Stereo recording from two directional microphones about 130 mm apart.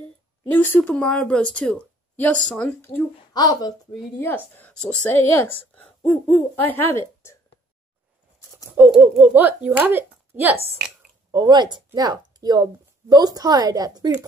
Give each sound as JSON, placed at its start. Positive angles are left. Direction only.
{"t": 0.5, "sound": "a woman's voice", "side_deg": 15}
{"t": 2.8, "sound": "a woman's voice", "side_deg": 15}
{"t": 3.3, "sound": "speech", "side_deg": 30}
{"t": 4.2, "sound": "a woman's voice", "side_deg": 15}
{"t": 8.7, "sound": "speech", "side_deg": -10}
{"t": 9.8, "sound": "a sound", "side_deg": -15}
{"t": 11.3, "sound": "a woman's voice", "side_deg": -35}